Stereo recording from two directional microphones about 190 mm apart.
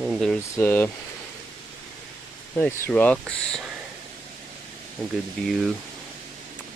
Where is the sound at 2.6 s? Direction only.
10° left (ahead or behind).